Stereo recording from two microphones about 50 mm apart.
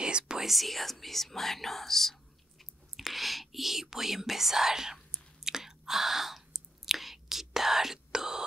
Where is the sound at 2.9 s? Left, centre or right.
Centre.